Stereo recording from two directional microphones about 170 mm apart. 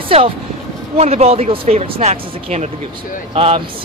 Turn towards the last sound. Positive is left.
turn(degrees=-35)  # may be behind; listen again after turning